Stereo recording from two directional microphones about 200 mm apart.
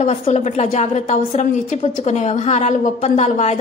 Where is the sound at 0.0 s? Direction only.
35° left (ahead or behind).